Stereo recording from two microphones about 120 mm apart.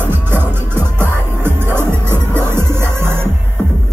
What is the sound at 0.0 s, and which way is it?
Music, 15° right (ahead or behind).